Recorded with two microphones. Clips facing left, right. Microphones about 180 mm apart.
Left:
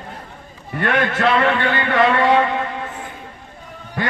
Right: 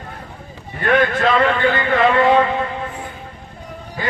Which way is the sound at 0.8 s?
70° left (ahead or behind).